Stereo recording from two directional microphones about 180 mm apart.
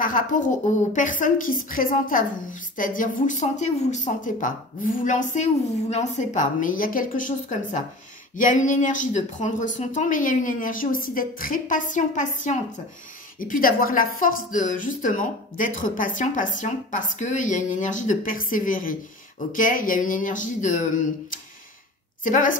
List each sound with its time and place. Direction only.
0.0 s a woman's voice: 45° left (ahead or behind)